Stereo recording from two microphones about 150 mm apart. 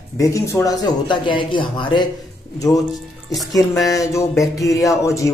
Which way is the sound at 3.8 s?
20° left (ahead or behind).